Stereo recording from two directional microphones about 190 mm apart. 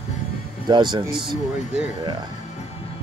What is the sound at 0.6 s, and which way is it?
Speech, 25° right (ahead or behind).